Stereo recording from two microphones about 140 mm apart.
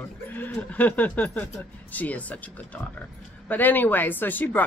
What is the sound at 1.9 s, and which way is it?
Speech, 10° left (ahead or behind).